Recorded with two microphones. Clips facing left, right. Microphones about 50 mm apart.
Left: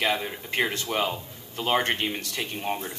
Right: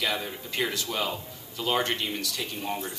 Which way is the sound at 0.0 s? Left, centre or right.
Left.